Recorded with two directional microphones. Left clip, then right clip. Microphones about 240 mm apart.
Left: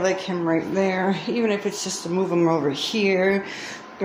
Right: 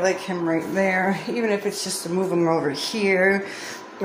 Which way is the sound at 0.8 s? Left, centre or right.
Centre.